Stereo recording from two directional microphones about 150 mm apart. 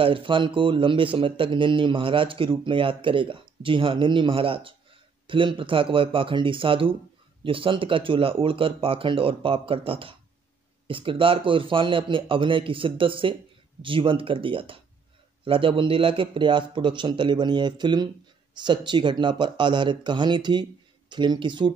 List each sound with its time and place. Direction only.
0.0 s speech: 35° right (ahead or behind)